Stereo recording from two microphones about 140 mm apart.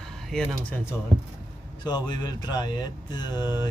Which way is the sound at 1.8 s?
30° left (ahead or behind).